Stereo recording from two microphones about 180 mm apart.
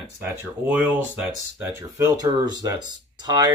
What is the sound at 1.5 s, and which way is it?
Speech, 15° right (ahead or behind).